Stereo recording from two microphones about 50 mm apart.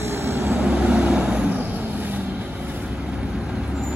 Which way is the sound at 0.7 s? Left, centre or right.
Right.